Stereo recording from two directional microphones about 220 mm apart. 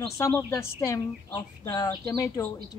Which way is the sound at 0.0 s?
15° left (ahead or behind).